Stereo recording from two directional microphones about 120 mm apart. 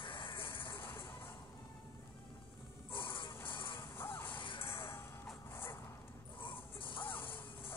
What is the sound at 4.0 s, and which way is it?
Music, 20° left (ahead or behind).